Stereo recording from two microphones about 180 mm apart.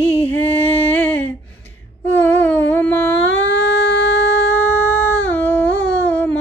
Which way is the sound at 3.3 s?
85° left.